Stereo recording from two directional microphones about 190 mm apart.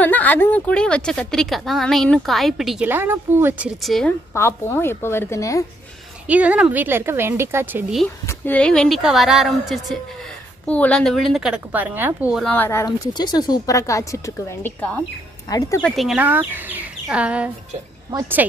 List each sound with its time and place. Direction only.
0.0 s a woman's voice: 10° left (ahead or behind)
4.3 s speech: 15° left (ahead or behind)
6.2 s speech: 5° right (ahead or behind)
8.3 s a woman's voice: 10° left (ahead or behind)
12.4 s speech: 10° left (ahead or behind)
15.8 s speech: centre (ahead or behind)